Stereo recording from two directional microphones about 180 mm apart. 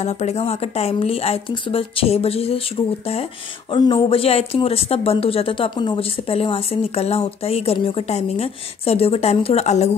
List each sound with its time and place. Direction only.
0.0 s speech: 40° left (ahead or behind)